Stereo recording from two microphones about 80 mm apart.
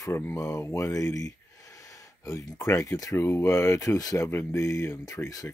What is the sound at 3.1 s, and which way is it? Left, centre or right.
Speech, left.